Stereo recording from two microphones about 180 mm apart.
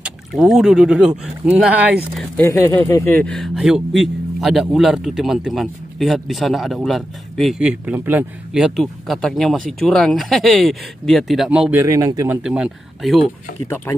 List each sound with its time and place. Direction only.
0.0 s speech: centre (ahead or behind)
2.3 s speech: 15° left (ahead or behind); by 11.8 s 5° right (ahead or behind)
11.8 s speech: 20° right (ahead or behind)
12.4 s speech: 5° right (ahead or behind)
13.9 s speech: 15° left (ahead or behind)